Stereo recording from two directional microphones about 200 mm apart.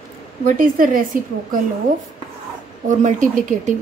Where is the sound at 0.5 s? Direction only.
45° right (ahead or behind).